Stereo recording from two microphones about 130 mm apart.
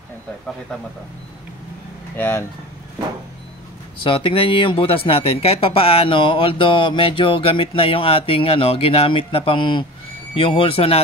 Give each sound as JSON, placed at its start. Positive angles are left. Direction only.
{"t": 2.1, "sound": "speech", "side_deg": 20}
{"t": 4.0, "sound": "speech", "side_deg": 40}